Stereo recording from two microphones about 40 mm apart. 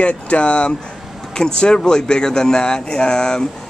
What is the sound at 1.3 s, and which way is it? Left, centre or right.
Speech, centre.